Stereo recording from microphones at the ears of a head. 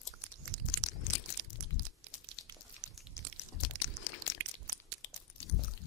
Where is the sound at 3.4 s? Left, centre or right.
Left.